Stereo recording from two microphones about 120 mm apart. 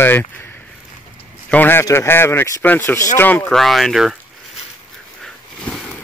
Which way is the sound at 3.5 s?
Centre (ahead or behind).